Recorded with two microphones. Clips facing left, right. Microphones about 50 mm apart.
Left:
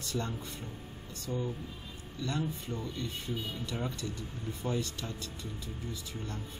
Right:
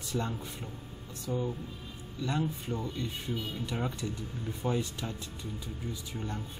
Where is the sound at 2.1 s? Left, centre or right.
Centre.